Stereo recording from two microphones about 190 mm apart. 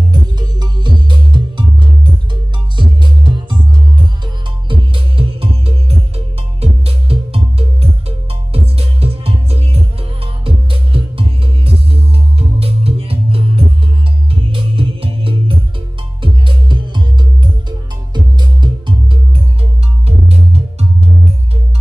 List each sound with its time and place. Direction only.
0.1 s music: 20° right (ahead or behind)
4.6 s music: 25° right (ahead or behind)